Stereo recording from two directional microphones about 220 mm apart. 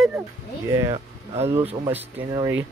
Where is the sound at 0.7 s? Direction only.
15° right (ahead or behind).